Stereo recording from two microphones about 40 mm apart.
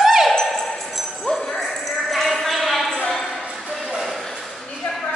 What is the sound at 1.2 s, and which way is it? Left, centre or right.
Jingle bell, centre.